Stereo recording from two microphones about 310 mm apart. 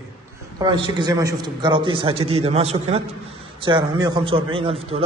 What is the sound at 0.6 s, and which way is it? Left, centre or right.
A man's voice, centre.